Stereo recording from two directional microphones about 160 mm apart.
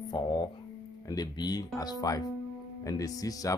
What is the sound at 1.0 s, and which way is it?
Speech, 25° left (ahead or behind).